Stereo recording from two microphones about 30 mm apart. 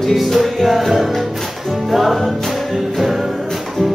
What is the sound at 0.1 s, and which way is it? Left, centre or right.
Music, centre.